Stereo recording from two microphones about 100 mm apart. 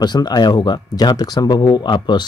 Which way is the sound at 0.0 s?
45° left (ahead or behind).